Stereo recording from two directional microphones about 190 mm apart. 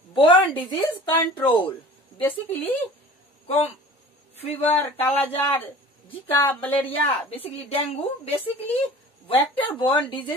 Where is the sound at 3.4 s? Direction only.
30° left (ahead or behind).